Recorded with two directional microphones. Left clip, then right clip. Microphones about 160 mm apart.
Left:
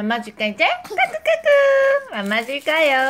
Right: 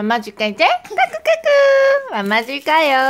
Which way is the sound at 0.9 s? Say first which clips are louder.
Right 3 dB; 40° right (ahead or behind).